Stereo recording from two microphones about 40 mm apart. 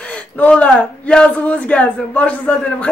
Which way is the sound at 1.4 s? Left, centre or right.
Left.